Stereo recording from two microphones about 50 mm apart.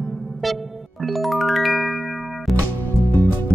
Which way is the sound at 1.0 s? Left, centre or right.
Centre.